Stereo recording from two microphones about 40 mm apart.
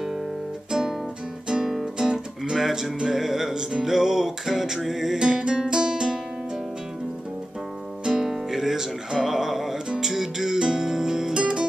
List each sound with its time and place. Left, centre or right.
0.7 s guitar: centre
1.5 s music: centre
8.0 s music: centre